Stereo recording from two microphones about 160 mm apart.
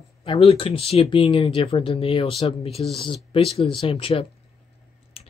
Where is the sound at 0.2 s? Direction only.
35° left (ahead or behind).